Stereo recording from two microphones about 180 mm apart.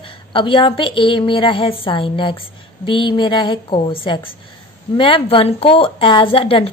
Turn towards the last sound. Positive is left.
turn(degrees=30)  # may be behind; listen again after turning